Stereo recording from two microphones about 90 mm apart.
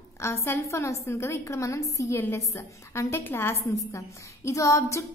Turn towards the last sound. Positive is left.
turn(degrees=35)  # may be behind; listen again after turning